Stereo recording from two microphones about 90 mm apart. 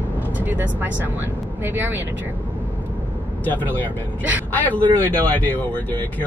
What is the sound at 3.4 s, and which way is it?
Speech, 20° left (ahead or behind).